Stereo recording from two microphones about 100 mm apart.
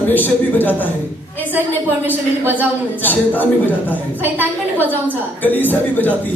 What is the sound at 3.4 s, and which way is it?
Speech, 15° left (ahead or behind).